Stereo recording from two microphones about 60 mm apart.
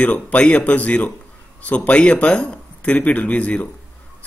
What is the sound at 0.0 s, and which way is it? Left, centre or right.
A man's voice, left.